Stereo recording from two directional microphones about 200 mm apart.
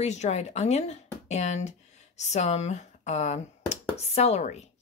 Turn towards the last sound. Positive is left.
turn(degrees=35)  # may be behind; listen again after turning